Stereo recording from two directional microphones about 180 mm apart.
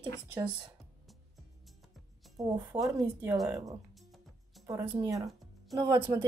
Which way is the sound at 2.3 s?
20° right (ahead or behind).